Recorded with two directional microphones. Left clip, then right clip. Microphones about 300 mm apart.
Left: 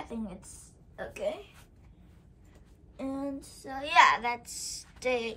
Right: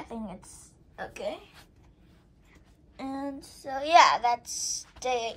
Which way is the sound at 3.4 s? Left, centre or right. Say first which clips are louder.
Right 5 dB; right.